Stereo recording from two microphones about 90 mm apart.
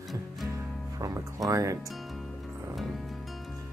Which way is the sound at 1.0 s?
40° right (ahead or behind).